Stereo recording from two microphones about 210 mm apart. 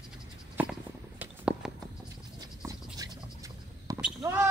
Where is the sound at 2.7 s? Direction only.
20° right (ahead or behind).